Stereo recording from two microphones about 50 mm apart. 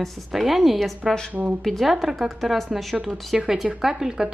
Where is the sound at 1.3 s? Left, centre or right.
Right.